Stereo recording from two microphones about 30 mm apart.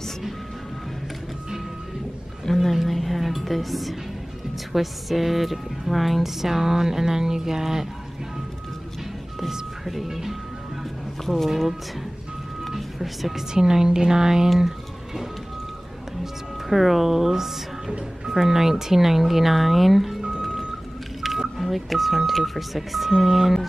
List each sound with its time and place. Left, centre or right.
2.4 s a sound: centre
2.9 s music: centre
4.7 s speech: centre
10.0 s speech: centre
11.2 s a woman's voice: centre
12.6 s music: centre
13.5 s a woman's voice: right
16.6 s speech: centre
20.2 s music: right
21.2 s speech: centre